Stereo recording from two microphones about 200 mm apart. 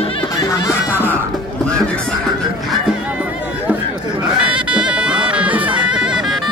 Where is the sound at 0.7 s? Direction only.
10° left (ahead or behind).